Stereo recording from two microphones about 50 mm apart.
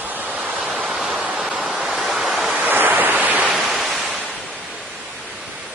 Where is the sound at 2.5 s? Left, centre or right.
Right.